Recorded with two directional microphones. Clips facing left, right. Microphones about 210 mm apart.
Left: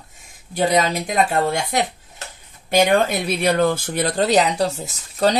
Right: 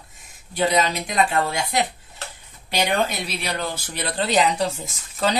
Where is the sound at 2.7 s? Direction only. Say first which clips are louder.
Left 6 dB; 45° left (ahead or behind).